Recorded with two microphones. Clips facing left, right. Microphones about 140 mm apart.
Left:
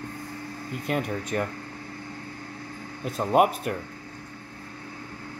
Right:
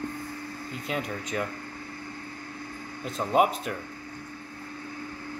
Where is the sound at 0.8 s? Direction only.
55° left (ahead or behind).